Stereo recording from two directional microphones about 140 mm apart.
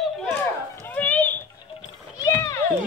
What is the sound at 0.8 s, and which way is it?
Children playing, 10° left (ahead or behind).